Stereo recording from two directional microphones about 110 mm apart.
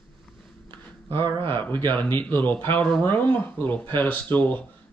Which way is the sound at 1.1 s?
45° right (ahead or behind).